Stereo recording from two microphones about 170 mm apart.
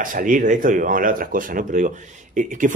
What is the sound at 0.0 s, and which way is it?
Speech, 50° right (ahead or behind).